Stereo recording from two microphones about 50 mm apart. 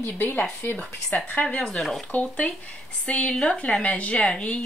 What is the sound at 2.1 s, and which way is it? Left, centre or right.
Speech, left.